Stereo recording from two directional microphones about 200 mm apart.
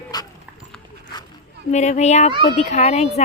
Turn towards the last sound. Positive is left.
turn(degrees=35)  # may be behind; listen again after turning